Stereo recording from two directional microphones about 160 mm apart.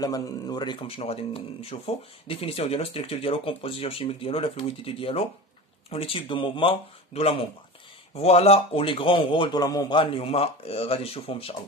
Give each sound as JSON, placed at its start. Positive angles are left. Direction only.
{"t": 0.0, "sound": "speech", "side_deg": 25}